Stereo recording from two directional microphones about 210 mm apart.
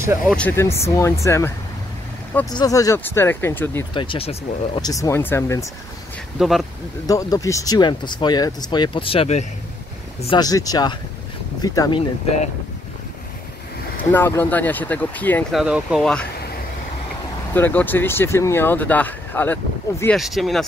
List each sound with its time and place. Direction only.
0.3 s speech: 10° left (ahead or behind)
2.5 s speech: 15° left (ahead or behind)
3.9 s speech: 25° left (ahead or behind)
6.3 s speech: centre (ahead or behind)
7.1 s speech: 15° left (ahead or behind)
10.3 s speech: 15° left (ahead or behind)
14.1 s speech: 10° left (ahead or behind)
15.6 s speech: 5° right (ahead or behind)
17.6 s speech: 10° left (ahead or behind)